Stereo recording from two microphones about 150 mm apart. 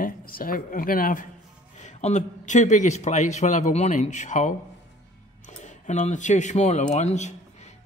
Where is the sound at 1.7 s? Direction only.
50° left (ahead or behind).